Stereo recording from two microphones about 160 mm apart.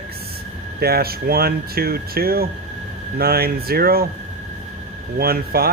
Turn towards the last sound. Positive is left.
turn(degrees=-70)  # may be behind; listen again after turning